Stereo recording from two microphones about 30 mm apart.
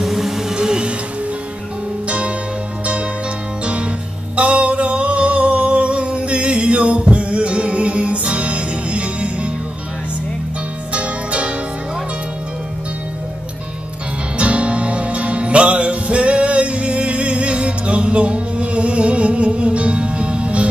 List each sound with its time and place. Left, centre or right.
0.0 s a sound: centre
0.5 s a sound: right
2.0 s music: right
3.6 s music: right
10.9 s music: right
14.4 s music: right